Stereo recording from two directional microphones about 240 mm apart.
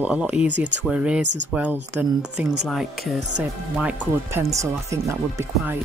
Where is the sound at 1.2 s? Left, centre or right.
Right.